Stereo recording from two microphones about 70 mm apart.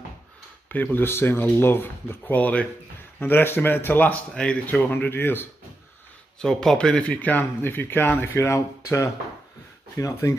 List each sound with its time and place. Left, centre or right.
0.7 s speech: left
4.3 s speech: centre
4.6 s speech: left
6.4 s speech: centre; by 8.5 s left
8.5 s speech: left